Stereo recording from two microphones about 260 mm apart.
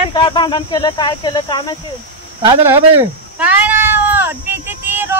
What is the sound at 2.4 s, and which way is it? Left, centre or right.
Speech, centre.